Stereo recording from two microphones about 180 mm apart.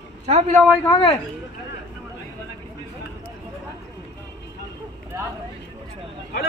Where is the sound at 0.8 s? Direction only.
20° left (ahead or behind).